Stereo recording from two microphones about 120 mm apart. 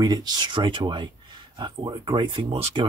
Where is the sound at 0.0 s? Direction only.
35° right (ahead or behind).